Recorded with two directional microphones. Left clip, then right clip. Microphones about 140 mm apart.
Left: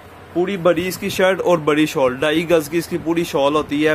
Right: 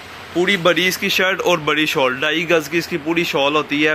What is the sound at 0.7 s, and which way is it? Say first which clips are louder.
Speech: right 6 dB; 15° left (ahead or behind).